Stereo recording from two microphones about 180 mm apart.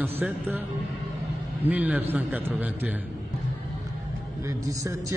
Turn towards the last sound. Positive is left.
turn(degrees=-15)  # may be behind; listen again after turning